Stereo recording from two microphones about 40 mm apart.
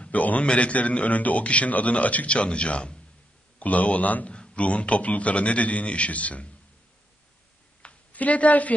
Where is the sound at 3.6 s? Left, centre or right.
Left.